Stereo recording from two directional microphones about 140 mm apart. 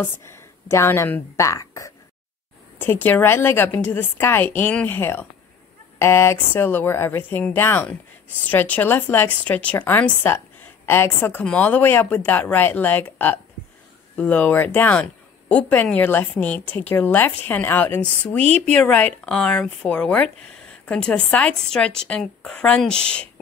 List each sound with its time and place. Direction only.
0.2 s a woman's voice: 20° left (ahead or behind)